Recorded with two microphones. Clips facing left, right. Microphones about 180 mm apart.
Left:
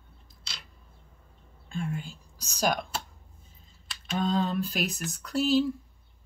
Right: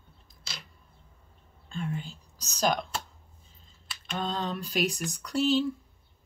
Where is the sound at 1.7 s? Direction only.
5° left (ahead or behind).